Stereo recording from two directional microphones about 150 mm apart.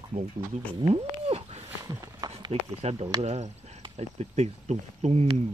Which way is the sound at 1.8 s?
20° right (ahead or behind).